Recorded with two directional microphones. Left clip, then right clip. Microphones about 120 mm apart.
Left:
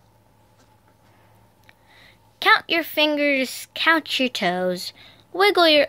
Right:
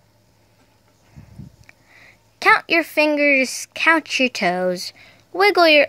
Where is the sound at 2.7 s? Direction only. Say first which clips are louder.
Right 3 dB; 30° right (ahead or behind).